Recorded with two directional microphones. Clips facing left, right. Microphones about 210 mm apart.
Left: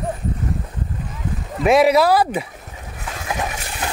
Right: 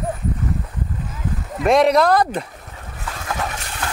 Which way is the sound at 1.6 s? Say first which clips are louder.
Left 1 dB; 5° left (ahead or behind).